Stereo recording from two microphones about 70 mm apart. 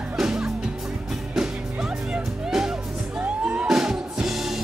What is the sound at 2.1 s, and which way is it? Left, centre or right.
Music, centre.